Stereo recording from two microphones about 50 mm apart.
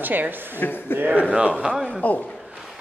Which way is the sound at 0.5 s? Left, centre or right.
Left.